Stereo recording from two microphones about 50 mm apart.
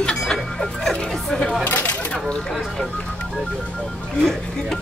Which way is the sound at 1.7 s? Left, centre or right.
Left.